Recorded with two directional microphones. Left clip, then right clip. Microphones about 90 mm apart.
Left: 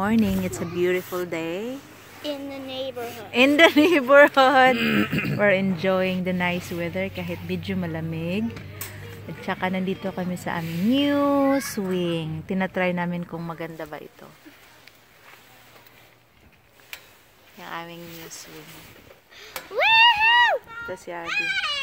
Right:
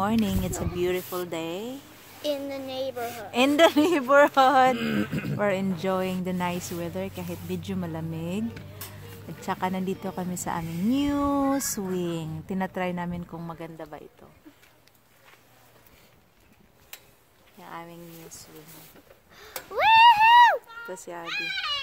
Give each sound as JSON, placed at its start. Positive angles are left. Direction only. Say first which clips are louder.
{"t": 0.0, "sound": "a woman's voice", "louder": "left 3 dB", "side_deg": -15}
{"t": 3.3, "sound": "a woman's voice", "louder": "left 4 dB", "side_deg": -20}
{"t": 6.3, "sound": "a woman's voice", "louder": "left 4 dB", "side_deg": -20}
{"t": 17.6, "sound": "speech", "louder": "left 6 dB", "side_deg": 15}
{"t": 19.7, "sound": "a sound", "louder": "even", "side_deg": -55}
{"t": 20.8, "sound": "speech", "louder": "left 4 dB", "side_deg": 5}